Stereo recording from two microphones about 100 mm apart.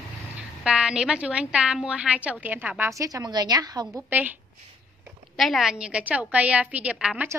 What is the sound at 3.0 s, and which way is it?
Speech, 35° right (ahead or behind).